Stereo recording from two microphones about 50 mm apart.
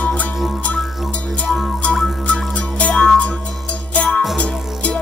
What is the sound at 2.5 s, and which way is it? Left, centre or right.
Music, left.